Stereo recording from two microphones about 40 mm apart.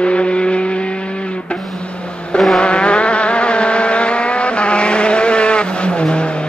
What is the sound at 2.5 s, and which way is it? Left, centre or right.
Vehicle, left.